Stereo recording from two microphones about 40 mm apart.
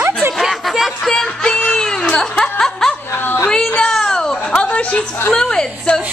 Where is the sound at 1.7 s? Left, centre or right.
Centre.